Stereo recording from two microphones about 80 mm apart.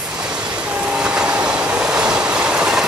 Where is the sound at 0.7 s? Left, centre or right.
Centre.